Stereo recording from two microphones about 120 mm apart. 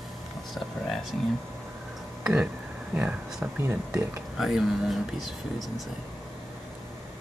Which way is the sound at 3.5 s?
20° right (ahead or behind).